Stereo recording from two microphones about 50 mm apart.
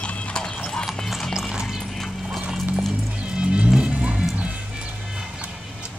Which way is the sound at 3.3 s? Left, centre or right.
Centre.